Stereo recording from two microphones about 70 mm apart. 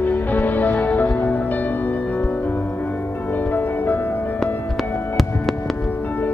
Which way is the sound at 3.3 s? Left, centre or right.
Left.